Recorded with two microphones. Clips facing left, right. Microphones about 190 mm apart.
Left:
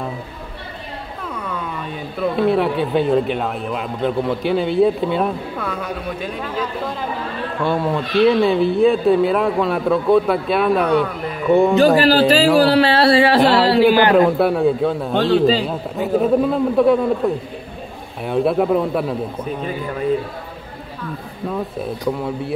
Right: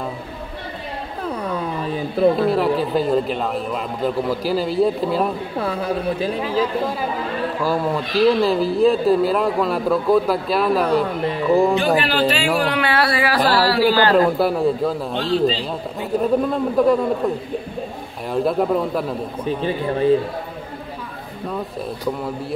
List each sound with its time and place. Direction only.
1.2 s a sound: 35° right (ahead or behind)
2.5 s speech: centre (ahead or behind)
5.6 s speech: 35° right (ahead or behind)
7.6 s speech: centre (ahead or behind)
11.8 s a man's voice: 35° left (ahead or behind); by 14.1 s 20° left (ahead or behind)
14.1 s speech: centre (ahead or behind)
18.2 s speech: centre (ahead or behind)
19.4 s speech: 30° right (ahead or behind)
22.0 s speech: centre (ahead or behind)